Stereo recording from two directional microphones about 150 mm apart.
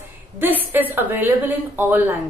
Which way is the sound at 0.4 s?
10° right (ahead or behind).